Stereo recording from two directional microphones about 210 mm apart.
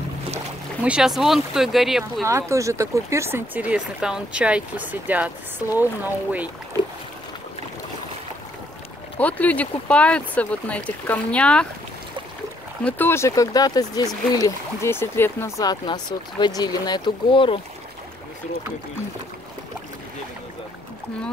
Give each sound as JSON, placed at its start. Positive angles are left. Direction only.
{"t": 0.8, "sound": "speech", "side_deg": -5}
{"t": 2.2, "sound": "speech", "side_deg": -15}
{"t": 9.2, "sound": "speech", "side_deg": 5}
{"t": 12.8, "sound": "speech", "side_deg": 10}